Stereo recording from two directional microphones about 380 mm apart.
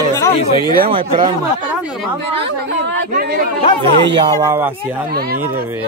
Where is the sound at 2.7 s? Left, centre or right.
Right.